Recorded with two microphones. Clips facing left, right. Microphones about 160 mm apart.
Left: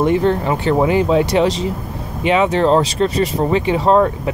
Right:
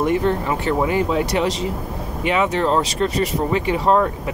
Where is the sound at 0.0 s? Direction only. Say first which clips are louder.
Left 4 dB; 30° left (ahead or behind).